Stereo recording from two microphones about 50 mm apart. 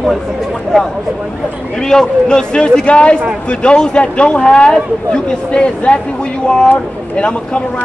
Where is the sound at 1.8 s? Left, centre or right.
Centre.